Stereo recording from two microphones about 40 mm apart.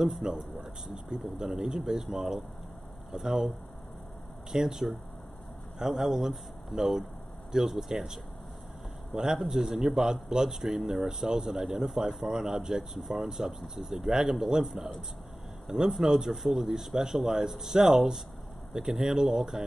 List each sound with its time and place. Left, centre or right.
0.2 s speech: centre